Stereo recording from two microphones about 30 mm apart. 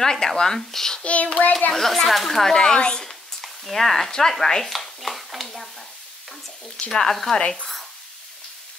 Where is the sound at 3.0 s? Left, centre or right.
Centre.